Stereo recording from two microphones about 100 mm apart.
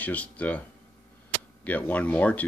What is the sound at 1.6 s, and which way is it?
Speech, 15° left (ahead or behind).